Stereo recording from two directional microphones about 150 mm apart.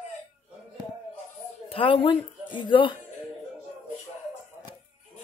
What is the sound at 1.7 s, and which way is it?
Speech, 35° left (ahead or behind).